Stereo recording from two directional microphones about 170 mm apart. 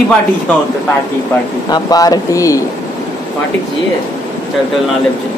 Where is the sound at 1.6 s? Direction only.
20° left (ahead or behind).